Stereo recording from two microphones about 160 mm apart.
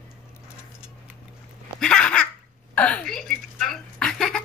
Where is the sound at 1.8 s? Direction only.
5° left (ahead or behind).